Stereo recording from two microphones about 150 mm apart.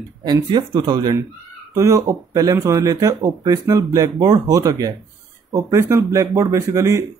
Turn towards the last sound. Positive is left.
turn(degrees=-20)  # may be behind; listen again after turning